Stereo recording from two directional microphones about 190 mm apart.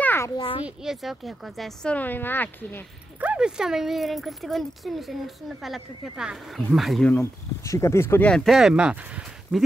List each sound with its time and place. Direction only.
0.0 s a sound: 10° left (ahead or behind)
0.4 s speech: 30° left (ahead or behind)
0.8 s speech: centre (ahead or behind)
3.2 s speech: 5° right (ahead or behind)